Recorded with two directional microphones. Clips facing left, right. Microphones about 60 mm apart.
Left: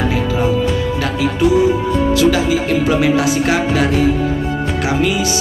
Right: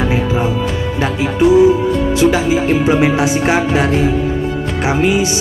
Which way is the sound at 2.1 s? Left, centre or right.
Right.